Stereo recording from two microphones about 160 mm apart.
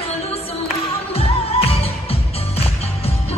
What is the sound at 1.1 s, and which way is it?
Music, 40° left (ahead or behind).